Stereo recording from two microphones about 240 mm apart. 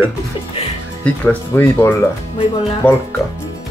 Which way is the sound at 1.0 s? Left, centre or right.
Centre.